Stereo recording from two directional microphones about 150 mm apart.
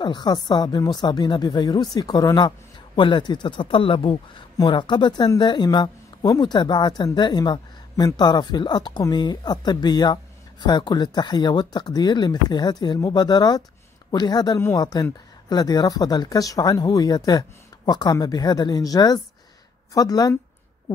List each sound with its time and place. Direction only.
0.0 s a woman's voice: 30° left (ahead or behind)